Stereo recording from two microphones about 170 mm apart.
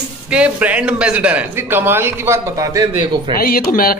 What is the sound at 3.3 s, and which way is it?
Speech, 60° left (ahead or behind).